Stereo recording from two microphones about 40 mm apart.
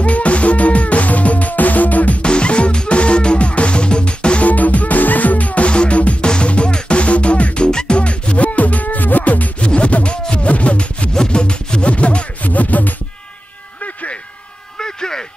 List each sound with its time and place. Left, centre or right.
0.0 s music: left
2.2 s music: left
4.5 s music: left
9.6 s scratch: left
11.1 s music: left
12.4 s music: left
14.8 s vehicle: centre